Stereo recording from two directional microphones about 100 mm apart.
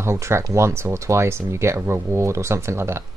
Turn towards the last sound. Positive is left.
turn(degrees=-25)  # may be behind; listen again after turning